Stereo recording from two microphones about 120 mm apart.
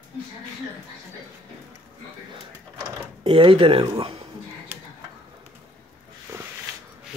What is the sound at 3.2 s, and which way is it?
Speech, 45° right (ahead or behind).